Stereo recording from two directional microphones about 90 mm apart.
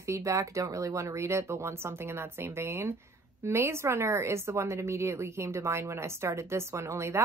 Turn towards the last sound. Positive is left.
turn(degrees=-30)  # may be behind; listen again after turning